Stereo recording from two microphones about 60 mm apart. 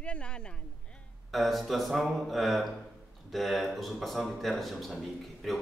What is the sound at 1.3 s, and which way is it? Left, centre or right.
Speech, centre.